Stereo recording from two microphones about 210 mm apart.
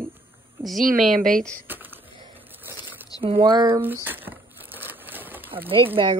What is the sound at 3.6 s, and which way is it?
Crumpling, 10° right (ahead or behind).